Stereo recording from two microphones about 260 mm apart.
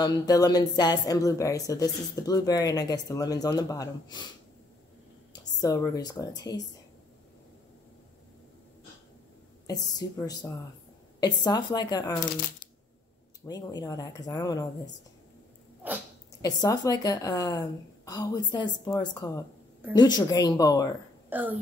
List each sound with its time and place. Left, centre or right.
0.0 s speech: centre
5.6 s speech: centre
9.7 s speech: centre
13.5 s speech: centre
15.8 s speech: centre
16.3 s speech: centre
21.3 s speech: centre